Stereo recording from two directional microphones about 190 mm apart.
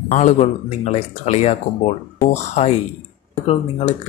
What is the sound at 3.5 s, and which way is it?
Speech, 30° left (ahead or behind).